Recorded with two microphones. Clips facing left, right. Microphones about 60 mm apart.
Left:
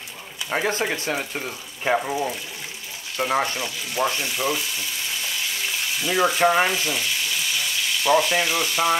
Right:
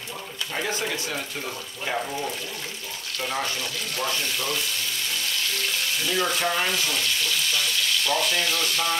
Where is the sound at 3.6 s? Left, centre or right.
Centre.